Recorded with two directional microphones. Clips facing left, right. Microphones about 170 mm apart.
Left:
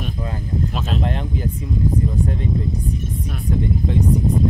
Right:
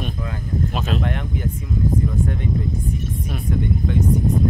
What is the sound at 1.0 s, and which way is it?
Speech, 30° left (ahead or behind).